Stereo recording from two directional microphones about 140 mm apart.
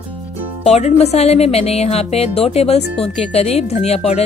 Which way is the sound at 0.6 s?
50° left (ahead or behind).